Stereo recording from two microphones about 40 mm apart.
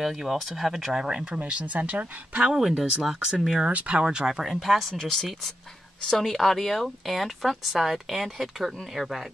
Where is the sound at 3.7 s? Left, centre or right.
Right.